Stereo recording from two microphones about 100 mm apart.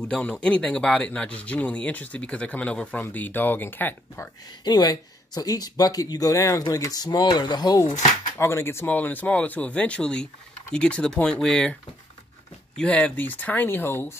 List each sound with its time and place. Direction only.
0.1 s speech: 10° left (ahead or behind)
4.6 s speech: 40° left (ahead or behind)
8.4 s speech: 25° left (ahead or behind); by 11.7 s 5° left (ahead or behind)
12.7 s speech: 10° left (ahead or behind)